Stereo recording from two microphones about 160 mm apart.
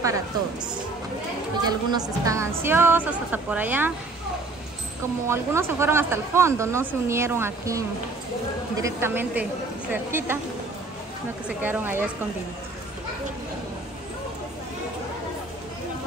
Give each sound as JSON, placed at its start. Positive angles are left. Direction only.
{"t": 1.6, "sound": "speech", "side_deg": -25}
{"t": 5.3, "sound": "speech", "side_deg": -15}
{"t": 11.4, "sound": "speech", "side_deg": -10}